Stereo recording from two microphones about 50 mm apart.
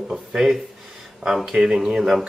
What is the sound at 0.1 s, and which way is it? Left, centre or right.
Speech, centre.